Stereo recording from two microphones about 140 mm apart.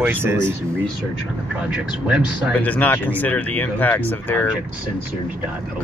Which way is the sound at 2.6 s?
10° left (ahead or behind).